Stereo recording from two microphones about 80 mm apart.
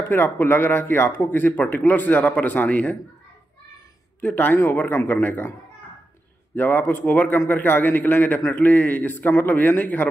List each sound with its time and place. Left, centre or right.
0.1 s speech: left
4.2 s speech: left
6.5 s speech: left